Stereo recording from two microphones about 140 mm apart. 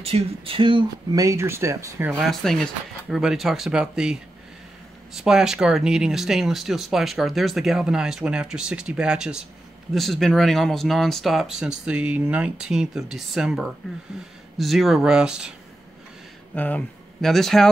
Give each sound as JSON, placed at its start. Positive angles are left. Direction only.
{"t": 0.0, "sound": "speech", "side_deg": -40}
{"t": 1.1, "sound": "speech", "side_deg": -20}
{"t": 2.1, "sound": "speech", "side_deg": 0}
{"t": 16.5, "sound": "speech", "side_deg": 10}